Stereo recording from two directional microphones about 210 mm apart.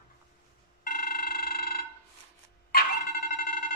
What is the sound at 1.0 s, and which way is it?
Pulse, 45° left (ahead or behind).